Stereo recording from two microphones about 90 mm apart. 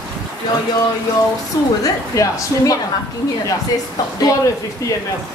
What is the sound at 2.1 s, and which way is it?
Speech, 40° left (ahead or behind).